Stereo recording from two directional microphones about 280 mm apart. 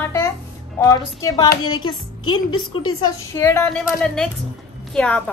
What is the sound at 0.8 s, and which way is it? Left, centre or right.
A woman's voice, centre.